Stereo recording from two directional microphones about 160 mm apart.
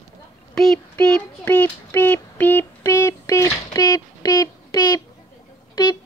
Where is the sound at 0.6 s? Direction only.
5° left (ahead or behind); by 5.0 s 25° left (ahead or behind).